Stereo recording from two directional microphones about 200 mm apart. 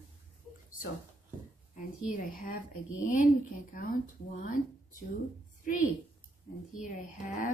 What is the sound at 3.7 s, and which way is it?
Speech, 45° left (ahead or behind).